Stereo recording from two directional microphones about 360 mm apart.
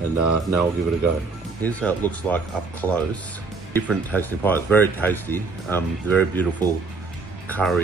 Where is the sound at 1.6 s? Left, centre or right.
Centre.